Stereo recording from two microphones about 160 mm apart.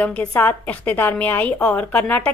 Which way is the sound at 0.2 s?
15° left (ahead or behind).